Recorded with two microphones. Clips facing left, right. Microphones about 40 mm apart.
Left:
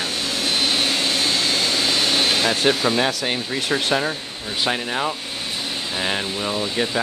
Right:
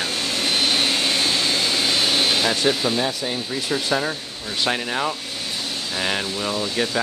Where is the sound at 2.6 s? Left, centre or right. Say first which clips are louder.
Left 2 dB; left.